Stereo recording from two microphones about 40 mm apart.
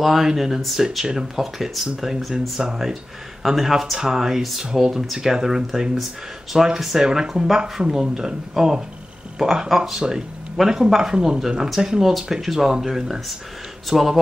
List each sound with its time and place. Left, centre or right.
0.0 s speech: centre
1.4 s speech: centre
4.4 s speech: centre